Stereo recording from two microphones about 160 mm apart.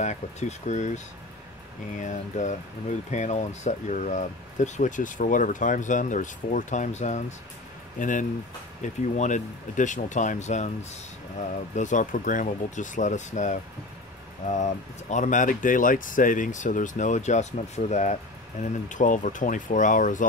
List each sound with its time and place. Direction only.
0.0 s speech: 45° left (ahead or behind)